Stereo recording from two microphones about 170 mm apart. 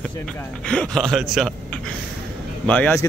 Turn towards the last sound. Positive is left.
turn(degrees=10)  # may be behind; listen again after turning